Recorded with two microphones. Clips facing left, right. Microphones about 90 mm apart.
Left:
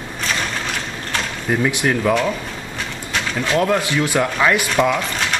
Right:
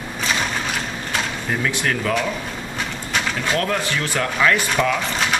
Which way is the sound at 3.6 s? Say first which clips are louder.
Left 5 dB; 15° left (ahead or behind).